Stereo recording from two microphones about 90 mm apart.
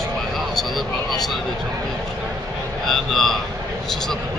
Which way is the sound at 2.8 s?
Centre (ahead or behind).